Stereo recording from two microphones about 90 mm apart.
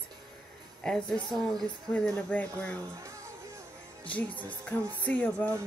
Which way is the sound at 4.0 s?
15° left (ahead or behind).